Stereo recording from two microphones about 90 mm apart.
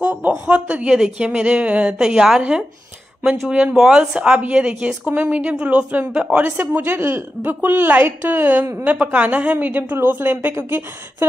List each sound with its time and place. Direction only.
0.0 s a woman's voice: 15° right (ahead or behind)